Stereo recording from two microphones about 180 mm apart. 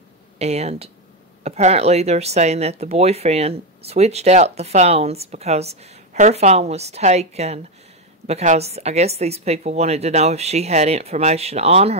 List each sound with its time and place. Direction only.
0.4 s speech: 35° right (ahead or behind)